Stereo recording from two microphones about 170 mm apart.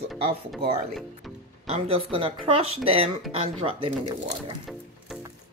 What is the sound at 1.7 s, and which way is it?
Speech, 35° right (ahead or behind).